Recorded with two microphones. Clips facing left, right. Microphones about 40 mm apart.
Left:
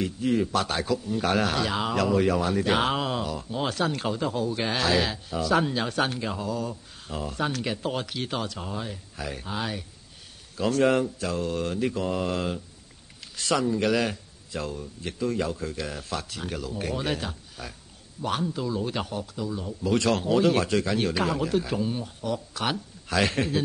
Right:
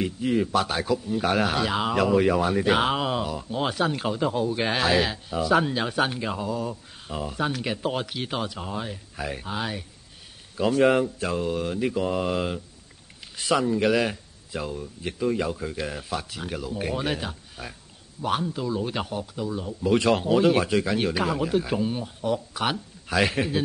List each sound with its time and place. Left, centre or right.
0.0 s a man's voice: centre
11.1 s mantra: right
11.5 s a man's voice: centre